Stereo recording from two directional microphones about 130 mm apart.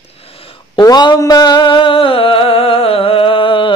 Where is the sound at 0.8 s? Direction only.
30° left (ahead or behind).